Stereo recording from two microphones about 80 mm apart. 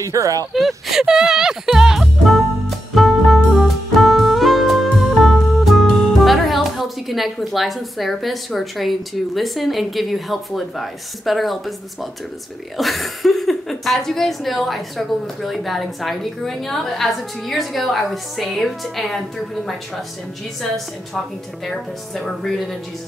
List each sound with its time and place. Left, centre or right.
0.0 s speech: right
0.5 s music: centre
12.7 s a woman's voice: centre
21.6 s a woman's voice: centre